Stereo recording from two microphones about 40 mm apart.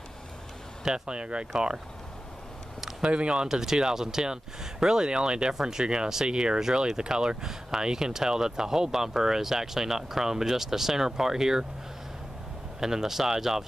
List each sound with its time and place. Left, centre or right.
0.8 s speech: right
3.0 s speech: right
3.4 s speech: centre
12.8 s speech: centre